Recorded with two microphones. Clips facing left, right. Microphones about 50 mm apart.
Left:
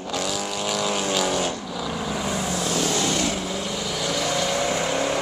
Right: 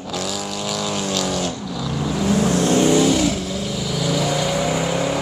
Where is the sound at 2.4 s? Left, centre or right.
Right.